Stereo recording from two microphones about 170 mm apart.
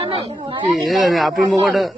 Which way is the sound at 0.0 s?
35° right (ahead or behind).